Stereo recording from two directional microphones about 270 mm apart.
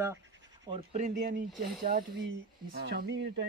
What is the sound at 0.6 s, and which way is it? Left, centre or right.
Speech, right.